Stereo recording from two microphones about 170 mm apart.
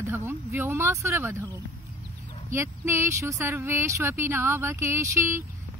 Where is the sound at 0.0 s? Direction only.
15° right (ahead or behind).